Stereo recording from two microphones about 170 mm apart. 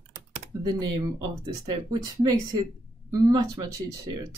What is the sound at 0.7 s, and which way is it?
Speech, 25° right (ahead or behind).